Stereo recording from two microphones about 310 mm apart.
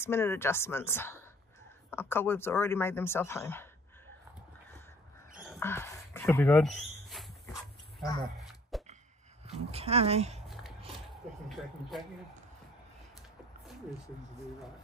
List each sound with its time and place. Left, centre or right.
0.0 s speech: centre
5.6 s speech: centre
8.0 s speech: centre
8.4 s a sound: centre
9.7 s speech: centre